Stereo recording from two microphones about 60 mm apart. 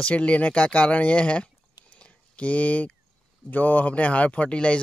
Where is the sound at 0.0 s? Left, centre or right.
Left.